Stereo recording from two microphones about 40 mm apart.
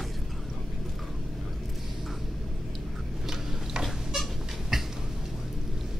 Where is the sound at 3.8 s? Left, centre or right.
Centre.